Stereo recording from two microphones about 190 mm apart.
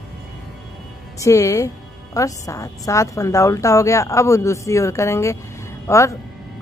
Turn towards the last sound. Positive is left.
turn(degrees=15)  # may be behind; listen again after turning